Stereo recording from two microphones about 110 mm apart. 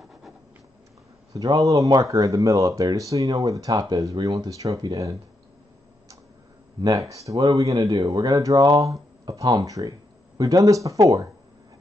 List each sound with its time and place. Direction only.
1.3 s speech: 35° right (ahead or behind)
6.8 s speech: 30° right (ahead or behind)